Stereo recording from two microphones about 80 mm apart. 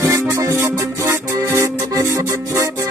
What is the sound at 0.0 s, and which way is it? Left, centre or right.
Music, right.